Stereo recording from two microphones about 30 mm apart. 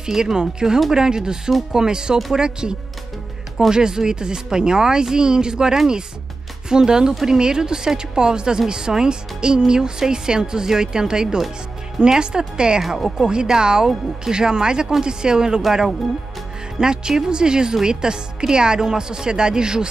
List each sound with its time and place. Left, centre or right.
0.2 s speech: right
3.7 s speech: right
12.8 s speech: centre
13.3 s speech: right
16.8 s speech: right